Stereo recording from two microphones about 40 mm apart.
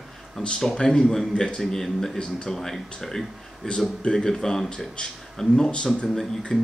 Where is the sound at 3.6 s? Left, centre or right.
Left.